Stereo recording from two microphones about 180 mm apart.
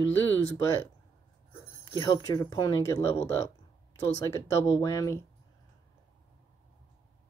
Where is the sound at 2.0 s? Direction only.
20° left (ahead or behind).